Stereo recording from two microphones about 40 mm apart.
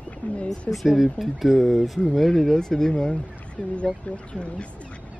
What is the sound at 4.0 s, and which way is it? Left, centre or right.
Speech, left.